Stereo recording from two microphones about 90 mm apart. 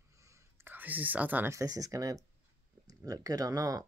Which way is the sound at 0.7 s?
20° right (ahead or behind).